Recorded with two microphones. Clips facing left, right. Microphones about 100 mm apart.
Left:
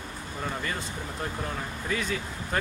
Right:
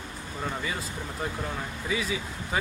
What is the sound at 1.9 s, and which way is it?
Speech, 5° right (ahead or behind).